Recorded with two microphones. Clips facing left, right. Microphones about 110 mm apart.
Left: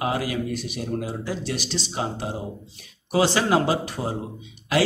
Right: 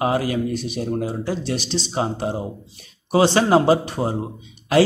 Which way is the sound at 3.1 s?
30° right (ahead or behind).